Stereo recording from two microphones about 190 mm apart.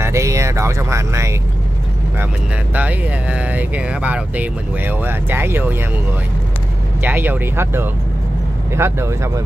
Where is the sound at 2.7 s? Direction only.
10° right (ahead or behind).